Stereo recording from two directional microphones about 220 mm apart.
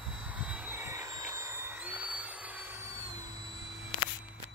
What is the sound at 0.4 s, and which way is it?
Vehicle, 5° right (ahead or behind).